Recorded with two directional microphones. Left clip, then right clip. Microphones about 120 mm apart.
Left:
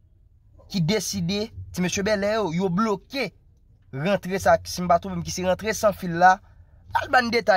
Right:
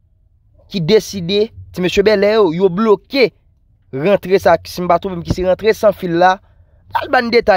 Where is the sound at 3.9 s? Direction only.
50° right (ahead or behind).